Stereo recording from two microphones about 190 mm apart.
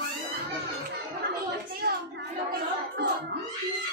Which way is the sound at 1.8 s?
55° right (ahead or behind).